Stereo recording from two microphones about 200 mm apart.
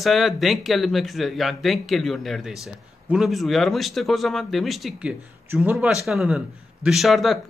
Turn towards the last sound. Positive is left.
turn(degrees=0)  # may be behind; listen again after turning